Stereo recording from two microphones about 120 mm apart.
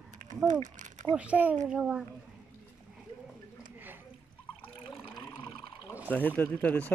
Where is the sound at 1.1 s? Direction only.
10° right (ahead or behind).